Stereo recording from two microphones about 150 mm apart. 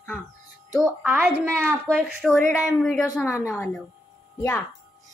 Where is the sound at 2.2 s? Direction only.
Centre (ahead or behind).